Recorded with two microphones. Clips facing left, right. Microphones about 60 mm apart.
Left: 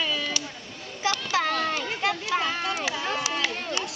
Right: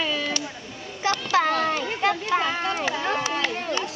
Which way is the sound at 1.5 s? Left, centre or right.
Centre.